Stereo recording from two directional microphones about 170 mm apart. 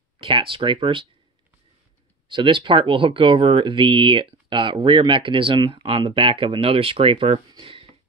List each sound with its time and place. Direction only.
0.2 s speech: 30° right (ahead or behind)
2.2 s speech: 30° right (ahead or behind)